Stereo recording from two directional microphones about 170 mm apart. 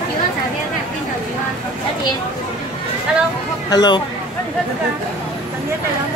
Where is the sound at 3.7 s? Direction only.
25° left (ahead or behind).